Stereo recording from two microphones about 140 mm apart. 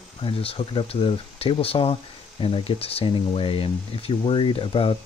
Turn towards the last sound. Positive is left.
turn(degrees=40)  # may be behind; listen again after turning